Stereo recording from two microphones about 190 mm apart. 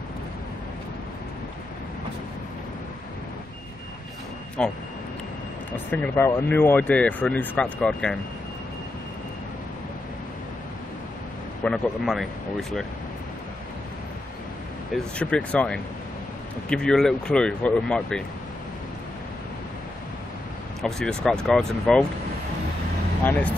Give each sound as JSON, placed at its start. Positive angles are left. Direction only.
{"t": 4.6, "sound": "speech", "side_deg": 5}
{"t": 11.6, "sound": "speech", "side_deg": 0}
{"t": 15.1, "sound": "speech", "side_deg": 5}
{"t": 20.8, "sound": "speech", "side_deg": 5}
{"t": 23.2, "sound": "speech", "side_deg": 10}